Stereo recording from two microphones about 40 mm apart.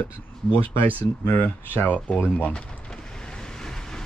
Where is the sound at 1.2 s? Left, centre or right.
Left.